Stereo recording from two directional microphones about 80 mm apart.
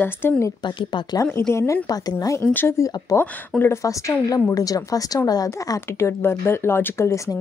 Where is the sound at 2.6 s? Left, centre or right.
Left.